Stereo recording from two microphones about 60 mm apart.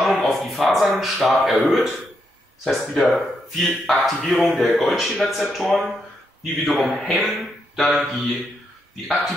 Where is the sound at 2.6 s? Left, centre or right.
Centre.